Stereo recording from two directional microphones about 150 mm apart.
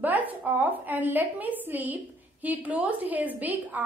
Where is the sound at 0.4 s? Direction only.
10° right (ahead or behind).